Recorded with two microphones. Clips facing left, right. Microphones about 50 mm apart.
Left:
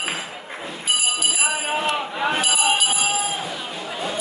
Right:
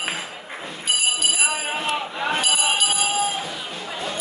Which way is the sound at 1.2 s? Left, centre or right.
Centre.